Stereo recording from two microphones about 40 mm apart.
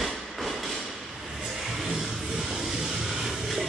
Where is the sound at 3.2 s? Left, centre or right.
Centre.